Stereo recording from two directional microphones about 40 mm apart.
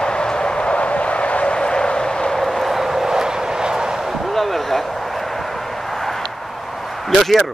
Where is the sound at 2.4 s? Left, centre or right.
Centre.